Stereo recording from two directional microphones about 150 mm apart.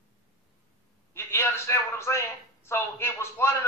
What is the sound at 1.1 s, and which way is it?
A man's voice, 15° left (ahead or behind).